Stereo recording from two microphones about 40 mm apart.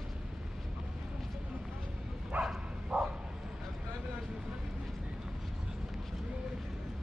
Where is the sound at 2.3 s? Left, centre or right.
Right.